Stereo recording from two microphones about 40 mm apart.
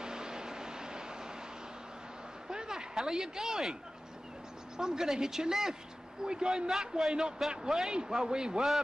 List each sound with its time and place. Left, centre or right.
0.0 s vehicle: centre
2.5 s a man's voice: centre
4.7 s a man's voice: centre